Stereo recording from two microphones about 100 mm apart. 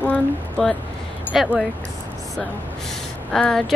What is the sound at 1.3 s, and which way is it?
Speech, 10° right (ahead or behind).